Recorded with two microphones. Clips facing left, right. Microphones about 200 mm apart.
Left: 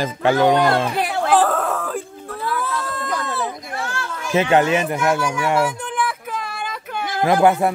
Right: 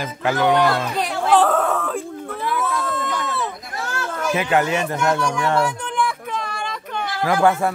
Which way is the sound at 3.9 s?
40° right (ahead or behind).